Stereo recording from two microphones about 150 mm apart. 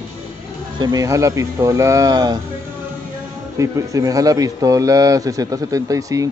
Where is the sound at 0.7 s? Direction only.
20° right (ahead or behind).